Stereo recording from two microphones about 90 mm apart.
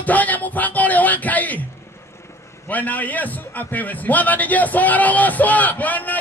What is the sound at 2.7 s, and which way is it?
A man's voice, 20° left (ahead or behind).